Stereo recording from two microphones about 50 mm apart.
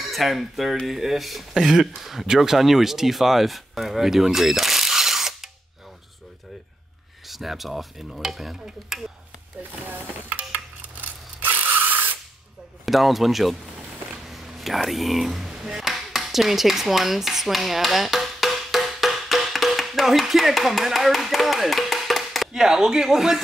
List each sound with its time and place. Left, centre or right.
0.0 s speech: centre
7.2 s stir: centre
9.6 s coin: right
12.8 s stir: centre
14.3 s speech: centre
15.5 s a sound: centre
22.5 s speech: centre